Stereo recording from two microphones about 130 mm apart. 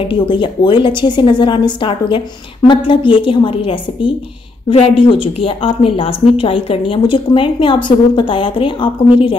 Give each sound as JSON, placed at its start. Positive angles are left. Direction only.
{"t": 0.0, "sound": "a woman's voice", "side_deg": 40}